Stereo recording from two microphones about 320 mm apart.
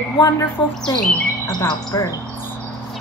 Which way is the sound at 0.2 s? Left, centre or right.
Centre.